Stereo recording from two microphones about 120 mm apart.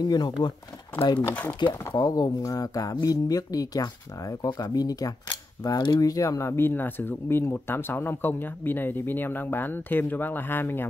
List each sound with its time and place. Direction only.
0.0 s speech: 35° left (ahead or behind); by 10.9 s 15° left (ahead or behind)